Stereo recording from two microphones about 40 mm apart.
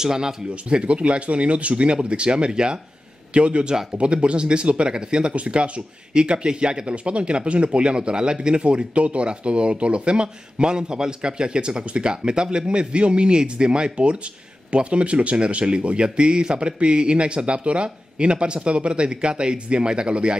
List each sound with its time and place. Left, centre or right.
0.0 s speech: centre
0.7 s speech: right